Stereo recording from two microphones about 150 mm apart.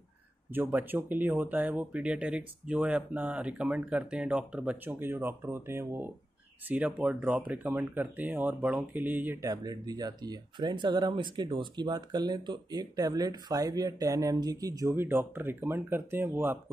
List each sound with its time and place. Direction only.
0.6 s speech: 15° right (ahead or behind)
9.4 s speech: 25° right (ahead or behind)